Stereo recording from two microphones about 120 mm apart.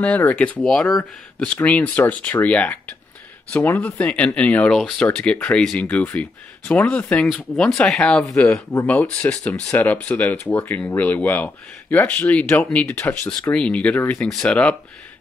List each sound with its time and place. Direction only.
0.0 s speech: 10° left (ahead or behind)
13.5 s speech: 10° left (ahead or behind)